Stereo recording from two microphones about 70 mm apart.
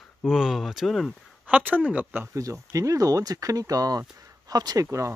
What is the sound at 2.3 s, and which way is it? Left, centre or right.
Speech, right.